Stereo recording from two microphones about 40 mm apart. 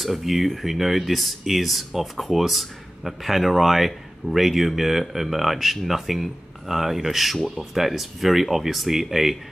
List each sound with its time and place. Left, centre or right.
0.0 s speech: centre